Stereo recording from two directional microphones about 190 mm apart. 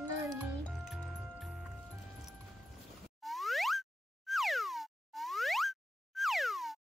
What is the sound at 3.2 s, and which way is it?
Boing, centre (ahead or behind).